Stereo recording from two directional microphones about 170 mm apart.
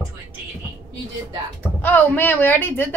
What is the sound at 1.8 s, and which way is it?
A man's voice, 10° left (ahead or behind).